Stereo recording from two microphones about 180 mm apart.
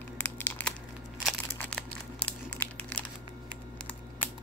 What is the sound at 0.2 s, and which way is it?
Crumpling, 10° left (ahead or behind).